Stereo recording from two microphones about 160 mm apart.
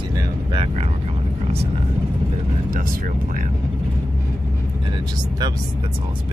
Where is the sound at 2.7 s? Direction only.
60° right (ahead or behind).